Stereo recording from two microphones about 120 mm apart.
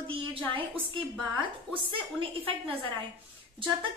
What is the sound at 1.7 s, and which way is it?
A woman's voice, 50° right (ahead or behind).